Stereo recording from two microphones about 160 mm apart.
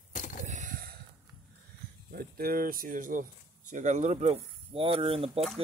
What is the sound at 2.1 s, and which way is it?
Speech, 70° right (ahead or behind).